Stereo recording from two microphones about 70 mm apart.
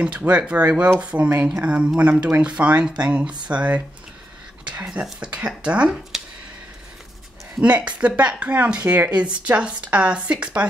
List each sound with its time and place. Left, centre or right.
0.0 s speech: centre
7.6 s speech: centre